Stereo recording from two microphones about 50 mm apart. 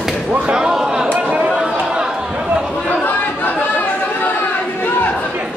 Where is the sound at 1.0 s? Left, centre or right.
Right.